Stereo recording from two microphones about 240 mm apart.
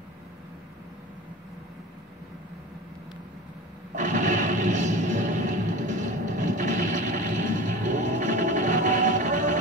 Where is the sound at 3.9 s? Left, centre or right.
Right.